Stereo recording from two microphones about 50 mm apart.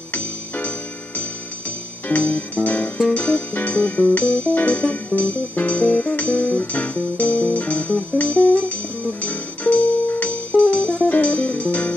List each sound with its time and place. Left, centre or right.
0.1 s music: left